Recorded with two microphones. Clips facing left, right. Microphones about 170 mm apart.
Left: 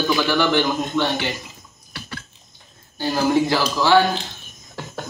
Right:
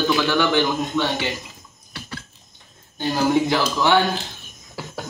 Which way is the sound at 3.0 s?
20° right (ahead or behind).